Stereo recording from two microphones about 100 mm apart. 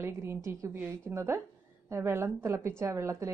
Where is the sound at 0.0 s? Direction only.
25° right (ahead or behind).